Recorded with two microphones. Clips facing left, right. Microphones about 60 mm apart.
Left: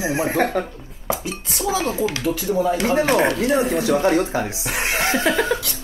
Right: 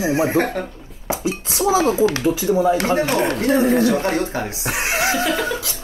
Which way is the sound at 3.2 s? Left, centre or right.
Right.